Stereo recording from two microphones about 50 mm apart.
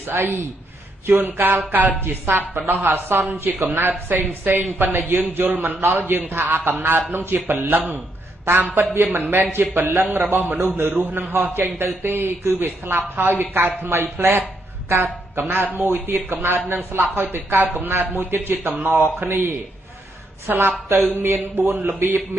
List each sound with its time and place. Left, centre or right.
0.0 s a woman's voice: right
1.2 s a woman's voice: right
11.3 s a woman's voice: right
14.9 s a woman's voice: right